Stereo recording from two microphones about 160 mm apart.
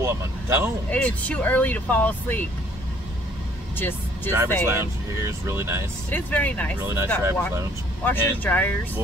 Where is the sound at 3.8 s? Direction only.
15° left (ahead or behind).